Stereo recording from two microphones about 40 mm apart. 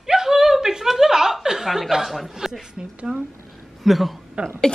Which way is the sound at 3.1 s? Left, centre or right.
Centre.